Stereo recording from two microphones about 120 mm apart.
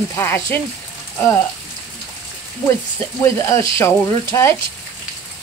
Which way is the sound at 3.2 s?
25° left (ahead or behind).